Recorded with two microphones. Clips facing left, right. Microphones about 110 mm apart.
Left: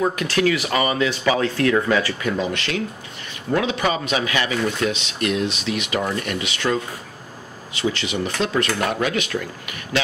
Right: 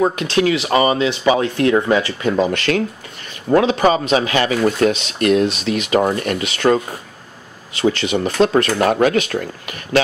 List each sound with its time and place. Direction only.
0.0 s speech: 25° right (ahead or behind)
2.3 s speech: 45° right (ahead or behind)
3.4 s a man's voice: 35° right (ahead or behind)